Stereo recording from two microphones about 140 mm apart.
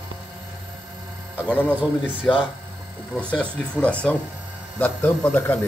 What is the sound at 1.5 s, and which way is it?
Speech, 10° left (ahead or behind).